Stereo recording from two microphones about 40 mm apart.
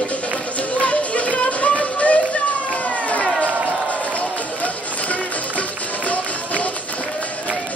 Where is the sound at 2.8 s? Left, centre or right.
Left.